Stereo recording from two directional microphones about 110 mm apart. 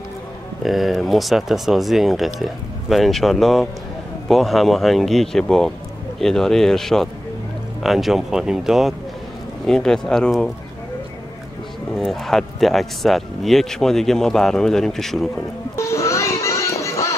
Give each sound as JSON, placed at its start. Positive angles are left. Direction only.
{"t": 0.7, "sound": "speech", "side_deg": 0}
{"t": 11.9, "sound": "speech", "side_deg": 0}
{"t": 15.7, "sound": "music", "side_deg": 25}